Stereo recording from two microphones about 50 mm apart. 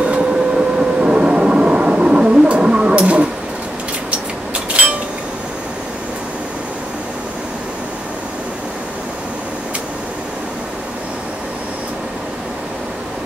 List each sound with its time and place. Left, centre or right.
0.0 s vehicle: right